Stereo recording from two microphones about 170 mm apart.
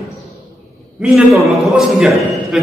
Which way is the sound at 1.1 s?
Centre (ahead or behind).